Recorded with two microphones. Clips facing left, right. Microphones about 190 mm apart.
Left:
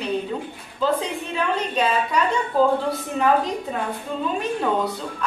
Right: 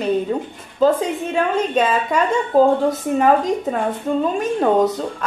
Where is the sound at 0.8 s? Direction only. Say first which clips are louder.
Right 7 dB; 45° right (ahead or behind).